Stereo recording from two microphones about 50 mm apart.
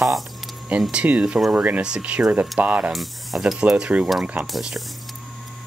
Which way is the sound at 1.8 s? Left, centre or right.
Centre.